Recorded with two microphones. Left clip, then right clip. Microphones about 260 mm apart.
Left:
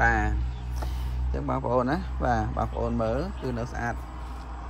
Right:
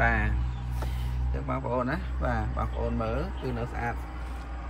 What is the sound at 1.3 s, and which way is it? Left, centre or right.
Speech, centre.